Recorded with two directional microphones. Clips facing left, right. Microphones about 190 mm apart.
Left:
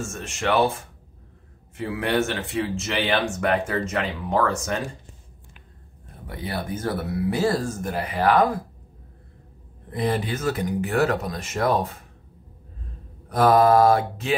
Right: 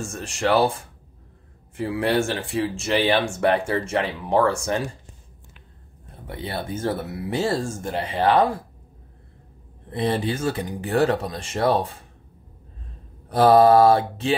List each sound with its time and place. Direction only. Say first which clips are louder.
0.0 s mantra: right 2 dB; 35° right (ahead or behind)
1.8 s speech: right 2 dB; 30° right (ahead or behind)
6.2 s speech: even; 25° right (ahead or behind)
9.8 s speech: right 1 dB; 30° right (ahead or behind)
13.3 s mantra: right 3 dB; 30° right (ahead or behind)